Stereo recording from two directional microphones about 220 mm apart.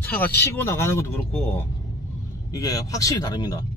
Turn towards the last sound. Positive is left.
turn(degrees=20)  # may be behind; listen again after turning